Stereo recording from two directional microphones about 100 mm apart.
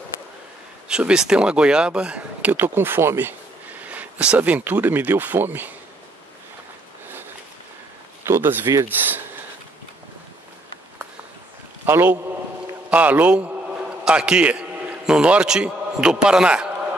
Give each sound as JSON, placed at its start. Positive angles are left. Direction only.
{"t": 0.8, "sound": "speech", "side_deg": -10}
{"t": 8.3, "sound": "speech", "side_deg": -25}
{"t": 11.8, "sound": "a man's voice", "side_deg": -20}